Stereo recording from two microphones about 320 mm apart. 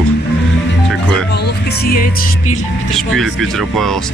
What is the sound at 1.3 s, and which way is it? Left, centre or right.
Music, left.